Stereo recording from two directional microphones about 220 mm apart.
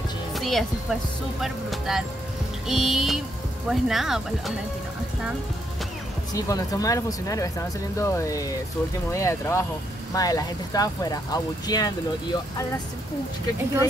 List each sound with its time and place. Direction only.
0.3 s speech: centre (ahead or behind)
6.3 s speech: 15° left (ahead or behind)